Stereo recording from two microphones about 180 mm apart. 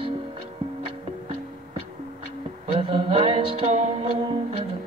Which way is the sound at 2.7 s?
30° right (ahead or behind).